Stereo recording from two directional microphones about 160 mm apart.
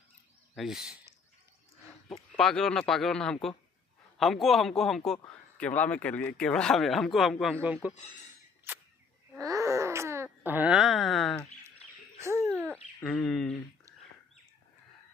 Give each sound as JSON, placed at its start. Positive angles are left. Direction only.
{"t": 0.6, "sound": "speech", "side_deg": -5}
{"t": 2.3, "sound": "speech", "side_deg": 5}
{"t": 9.4, "sound": "wail", "side_deg": -20}
{"t": 12.2, "sound": "bird", "side_deg": -20}
{"t": 12.7, "sound": "speech", "side_deg": 0}